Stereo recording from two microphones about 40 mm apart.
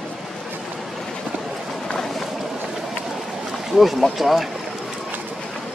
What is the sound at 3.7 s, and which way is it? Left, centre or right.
Speech, centre.